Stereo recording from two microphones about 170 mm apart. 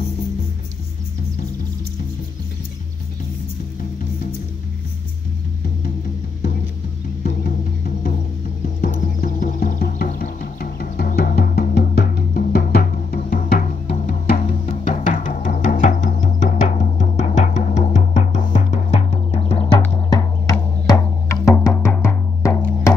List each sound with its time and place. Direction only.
7.2 s music: 50° left (ahead or behind); by 22.8 s 10° left (ahead or behind)